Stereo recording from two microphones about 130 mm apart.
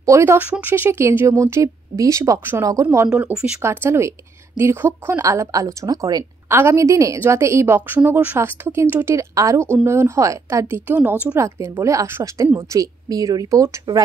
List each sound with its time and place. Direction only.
0.0 s speech: 20° right (ahead or behind)
3.1 s speech: 10° right (ahead or behind)
3.6 s speech: 20° right (ahead or behind)
11.0 s speech: 10° right (ahead or behind)
11.3 s speech: 20° right (ahead or behind)